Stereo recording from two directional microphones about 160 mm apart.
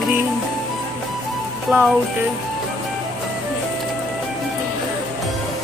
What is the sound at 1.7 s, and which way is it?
Music, 5° right (ahead or behind).